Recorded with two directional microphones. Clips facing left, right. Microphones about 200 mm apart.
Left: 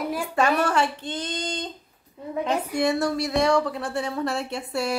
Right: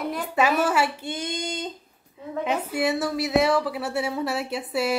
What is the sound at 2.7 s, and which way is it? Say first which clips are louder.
A woman's voice: left 2 dB; 5° right (ahead or behind).